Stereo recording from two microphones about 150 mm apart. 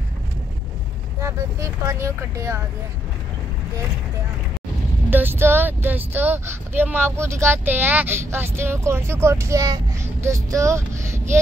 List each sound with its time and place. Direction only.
1.2 s speech: 20° right (ahead or behind)
5.1 s speech: 15° right (ahead or behind)